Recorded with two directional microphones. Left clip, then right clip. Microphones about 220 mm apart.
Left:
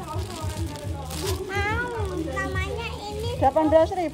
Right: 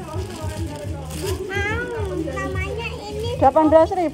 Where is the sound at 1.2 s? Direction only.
35° left (ahead or behind).